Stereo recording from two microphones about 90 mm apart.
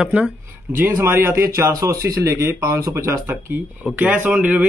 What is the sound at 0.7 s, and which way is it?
Speech, 25° right (ahead or behind).